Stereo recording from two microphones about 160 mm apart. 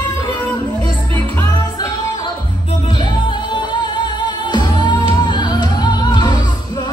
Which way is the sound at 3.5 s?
25° left (ahead or behind).